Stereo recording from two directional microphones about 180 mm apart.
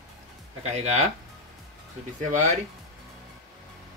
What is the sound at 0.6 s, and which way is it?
Speech, 35° right (ahead or behind).